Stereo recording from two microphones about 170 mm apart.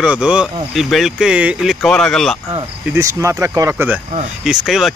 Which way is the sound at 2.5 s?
15° right (ahead or behind).